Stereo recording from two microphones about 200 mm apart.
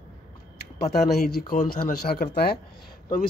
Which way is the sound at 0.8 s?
50° left (ahead or behind).